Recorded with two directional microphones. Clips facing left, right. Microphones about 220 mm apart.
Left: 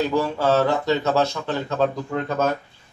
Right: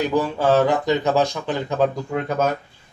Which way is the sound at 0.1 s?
15° right (ahead or behind).